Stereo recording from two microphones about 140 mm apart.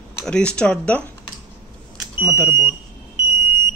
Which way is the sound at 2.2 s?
15° left (ahead or behind).